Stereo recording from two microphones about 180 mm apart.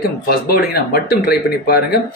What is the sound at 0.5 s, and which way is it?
Speech, 60° left (ahead or behind).